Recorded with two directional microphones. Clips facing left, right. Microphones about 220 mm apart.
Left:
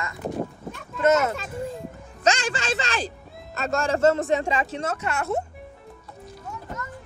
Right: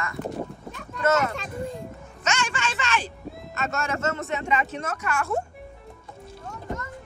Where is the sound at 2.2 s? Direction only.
35° left (ahead or behind).